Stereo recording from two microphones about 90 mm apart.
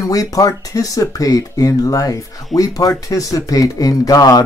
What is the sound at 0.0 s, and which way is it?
Speech, 40° left (ahead or behind).